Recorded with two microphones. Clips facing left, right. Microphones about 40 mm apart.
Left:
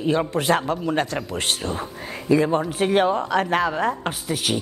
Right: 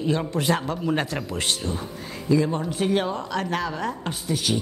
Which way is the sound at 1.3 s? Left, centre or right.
Left.